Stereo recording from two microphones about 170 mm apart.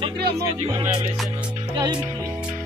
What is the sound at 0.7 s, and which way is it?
Music, 25° right (ahead or behind).